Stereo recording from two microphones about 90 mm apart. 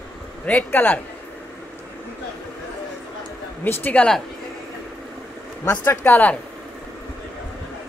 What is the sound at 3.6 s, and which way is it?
Speech, 20° left (ahead or behind).